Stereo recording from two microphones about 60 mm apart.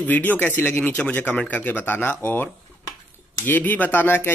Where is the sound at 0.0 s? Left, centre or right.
Left.